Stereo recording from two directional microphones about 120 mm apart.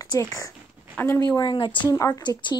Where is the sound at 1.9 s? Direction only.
30° left (ahead or behind).